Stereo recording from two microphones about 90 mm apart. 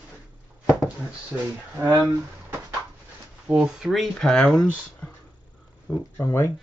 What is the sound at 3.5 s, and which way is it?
Speech, 10° right (ahead or behind).